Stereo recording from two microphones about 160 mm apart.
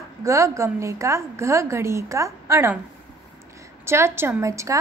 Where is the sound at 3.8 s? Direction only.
15° right (ahead or behind).